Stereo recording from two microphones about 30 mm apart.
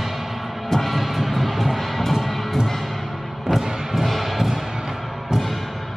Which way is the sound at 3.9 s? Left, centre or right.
Centre.